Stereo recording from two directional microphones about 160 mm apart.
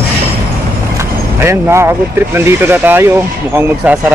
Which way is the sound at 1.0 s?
15° right (ahead or behind).